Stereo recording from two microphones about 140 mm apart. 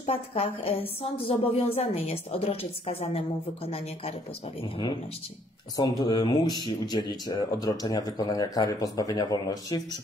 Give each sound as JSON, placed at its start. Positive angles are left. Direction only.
{"t": 0.0, "sound": "a woman's voice", "side_deg": 45}
{"t": 5.8, "sound": "speech", "side_deg": 25}